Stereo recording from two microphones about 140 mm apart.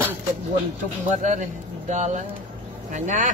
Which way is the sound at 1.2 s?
60° right (ahead or behind).